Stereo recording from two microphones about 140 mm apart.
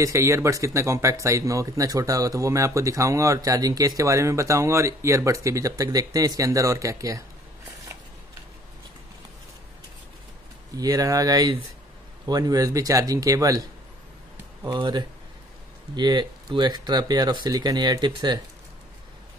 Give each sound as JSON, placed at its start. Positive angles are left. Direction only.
{"t": 0.0, "sound": "speech", "side_deg": -20}
{"t": 10.8, "sound": "speech", "side_deg": -25}